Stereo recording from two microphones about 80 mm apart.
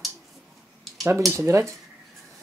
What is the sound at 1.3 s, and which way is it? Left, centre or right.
Speech, right.